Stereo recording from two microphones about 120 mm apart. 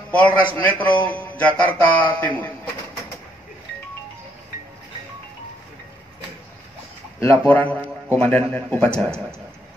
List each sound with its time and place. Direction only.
0.1 s a man's voice: 10° left (ahead or behind)
7.2 s speech: 20° left (ahead or behind)